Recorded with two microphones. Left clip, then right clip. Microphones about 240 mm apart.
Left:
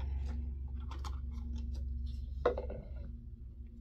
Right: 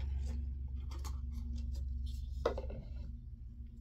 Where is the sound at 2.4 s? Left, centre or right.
Centre.